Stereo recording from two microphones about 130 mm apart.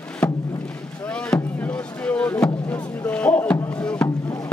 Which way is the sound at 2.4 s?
10° left (ahead or behind).